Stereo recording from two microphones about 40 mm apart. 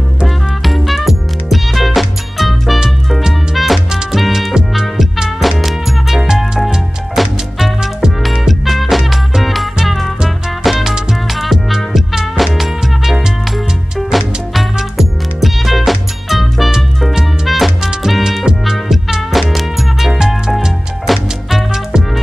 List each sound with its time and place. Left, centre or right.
0.7 s music: centre
4.6 s music: centre
6.2 s music: centre
7.2 s music: centre
8.2 s music: centre
18.4 s music: centre